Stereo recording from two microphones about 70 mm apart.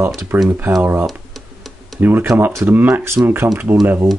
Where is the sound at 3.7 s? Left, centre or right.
Right.